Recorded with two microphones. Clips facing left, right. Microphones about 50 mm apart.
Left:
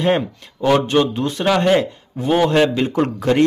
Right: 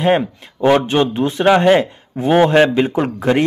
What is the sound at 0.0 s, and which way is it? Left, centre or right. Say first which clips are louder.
A man's voice: right 3 dB; centre.